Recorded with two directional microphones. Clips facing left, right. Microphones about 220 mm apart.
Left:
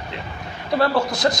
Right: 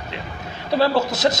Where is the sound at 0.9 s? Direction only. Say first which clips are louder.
Right 1 dB; 20° right (ahead or behind).